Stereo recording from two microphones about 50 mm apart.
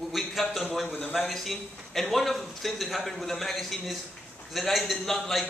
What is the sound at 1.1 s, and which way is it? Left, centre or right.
A man's voice, centre.